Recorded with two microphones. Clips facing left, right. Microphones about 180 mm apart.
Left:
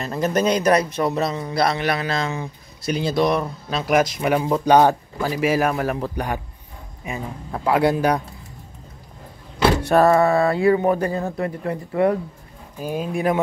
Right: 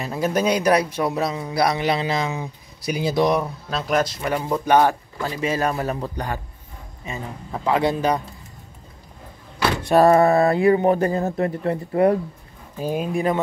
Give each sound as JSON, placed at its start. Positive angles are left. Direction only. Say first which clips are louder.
{"t": 0.0, "sound": "speech", "louder": "left 1 dB", "side_deg": -5}
{"t": 3.7, "sound": "speech", "louder": "left 3 dB", "side_deg": 10}
{"t": 9.9, "sound": "speech", "louder": "right 3 dB", "side_deg": -30}
{"t": 13.1, "sound": "speech", "louder": "left 2 dB", "side_deg": 5}